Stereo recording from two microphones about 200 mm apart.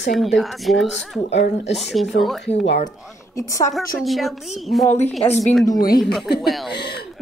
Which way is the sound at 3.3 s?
15° left (ahead or behind).